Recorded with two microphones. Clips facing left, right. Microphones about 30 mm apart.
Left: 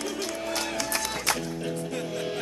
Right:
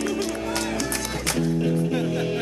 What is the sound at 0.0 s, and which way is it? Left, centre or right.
Music, centre.